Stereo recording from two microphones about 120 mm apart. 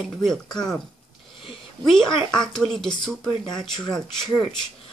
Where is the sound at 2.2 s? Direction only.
5° left (ahead or behind).